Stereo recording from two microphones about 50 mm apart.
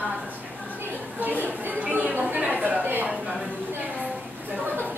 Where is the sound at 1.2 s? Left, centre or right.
Right.